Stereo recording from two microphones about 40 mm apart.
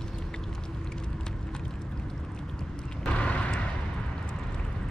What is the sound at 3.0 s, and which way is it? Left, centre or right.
Vehicle, left.